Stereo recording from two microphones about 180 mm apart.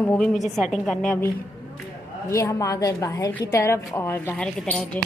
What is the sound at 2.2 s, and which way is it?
Speech, 15° left (ahead or behind).